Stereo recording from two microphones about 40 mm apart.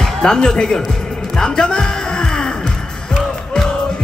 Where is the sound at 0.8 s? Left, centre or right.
Centre.